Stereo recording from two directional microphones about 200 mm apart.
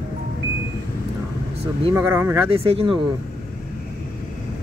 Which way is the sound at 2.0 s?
10° right (ahead or behind).